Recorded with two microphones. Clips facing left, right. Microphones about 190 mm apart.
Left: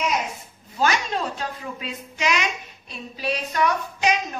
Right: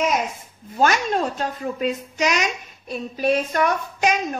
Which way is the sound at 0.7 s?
50° right (ahead or behind).